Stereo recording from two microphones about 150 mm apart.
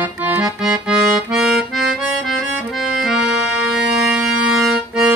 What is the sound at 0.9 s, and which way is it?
Accordion, 20° right (ahead or behind).